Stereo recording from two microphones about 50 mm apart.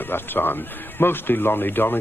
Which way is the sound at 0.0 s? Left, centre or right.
Left.